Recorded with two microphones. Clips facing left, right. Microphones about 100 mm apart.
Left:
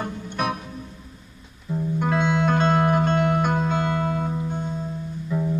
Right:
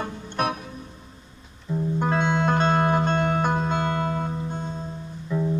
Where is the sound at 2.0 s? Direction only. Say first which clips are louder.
Left 1 dB; 30° right (ahead or behind).